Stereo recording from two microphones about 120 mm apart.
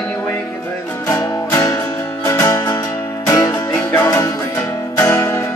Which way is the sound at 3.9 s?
20° left (ahead or behind).